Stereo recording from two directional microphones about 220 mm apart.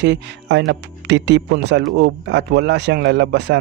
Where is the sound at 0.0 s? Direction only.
50° right (ahead or behind).